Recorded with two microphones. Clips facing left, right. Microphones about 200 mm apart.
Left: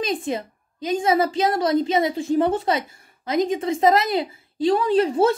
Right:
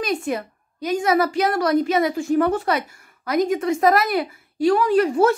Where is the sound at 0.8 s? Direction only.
25° left (ahead or behind).